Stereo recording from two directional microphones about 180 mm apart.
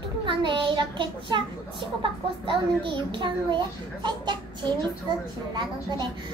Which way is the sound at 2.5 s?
25° right (ahead or behind).